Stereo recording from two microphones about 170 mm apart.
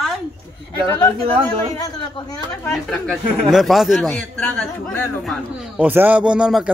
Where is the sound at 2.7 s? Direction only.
Centre (ahead or behind).